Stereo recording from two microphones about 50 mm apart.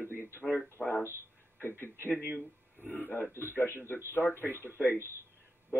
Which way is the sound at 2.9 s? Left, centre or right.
Left.